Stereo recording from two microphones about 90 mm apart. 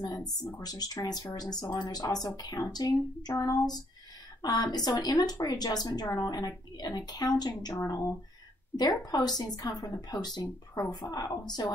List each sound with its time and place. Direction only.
0.0 s speech: 45° left (ahead or behind)
7.7 s speech: 35° left (ahead or behind)
8.7 s speech: 50° left (ahead or behind)